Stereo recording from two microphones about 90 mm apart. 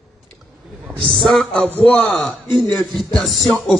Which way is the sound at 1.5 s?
20° left (ahead or behind).